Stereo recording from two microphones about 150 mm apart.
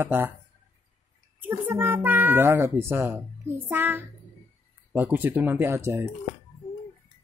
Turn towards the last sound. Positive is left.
turn(degrees=-20)  # may be behind; listen again after turning